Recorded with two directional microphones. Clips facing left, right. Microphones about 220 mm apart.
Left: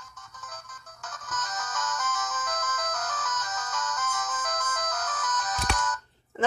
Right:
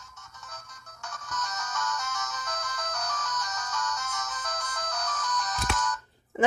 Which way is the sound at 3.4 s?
20° left (ahead or behind).